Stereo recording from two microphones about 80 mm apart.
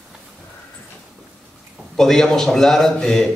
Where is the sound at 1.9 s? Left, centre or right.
Centre.